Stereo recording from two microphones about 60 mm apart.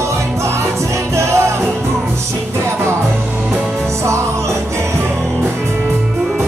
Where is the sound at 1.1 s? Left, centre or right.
Right.